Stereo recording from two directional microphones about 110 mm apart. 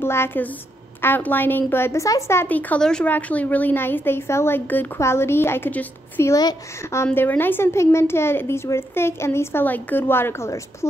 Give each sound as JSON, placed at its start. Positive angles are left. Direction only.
{"t": 0.0, "sound": "a woman's voice", "side_deg": 20}
{"t": 6.3, "sound": "a woman's voice", "side_deg": 30}